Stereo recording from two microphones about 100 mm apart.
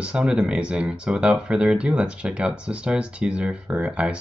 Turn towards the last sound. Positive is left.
turn(degrees=-10)  # may be behind; listen again after turning